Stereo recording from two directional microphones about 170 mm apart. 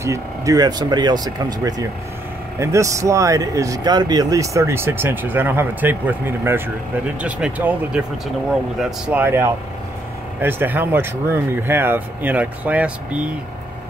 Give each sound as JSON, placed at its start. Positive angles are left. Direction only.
{"t": 0.0, "sound": "speech", "side_deg": -20}
{"t": 9.0, "sound": "speech", "side_deg": -10}